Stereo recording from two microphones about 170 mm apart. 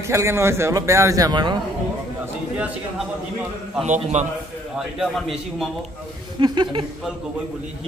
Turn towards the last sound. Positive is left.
turn(degrees=-30)  # may be behind; listen again after turning